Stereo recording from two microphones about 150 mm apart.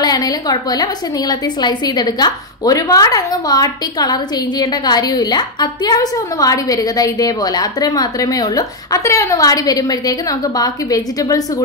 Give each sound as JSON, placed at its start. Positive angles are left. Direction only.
{"t": 0.0, "sound": "a woman's voice", "side_deg": 25}